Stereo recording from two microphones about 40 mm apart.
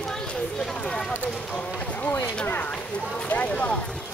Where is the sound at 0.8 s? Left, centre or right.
Left.